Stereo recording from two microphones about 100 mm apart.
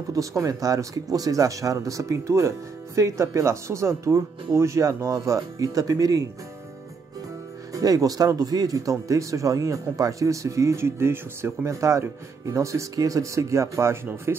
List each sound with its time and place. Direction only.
0.1 s speech: 35° right (ahead or behind)
7.7 s speech: 40° right (ahead or behind)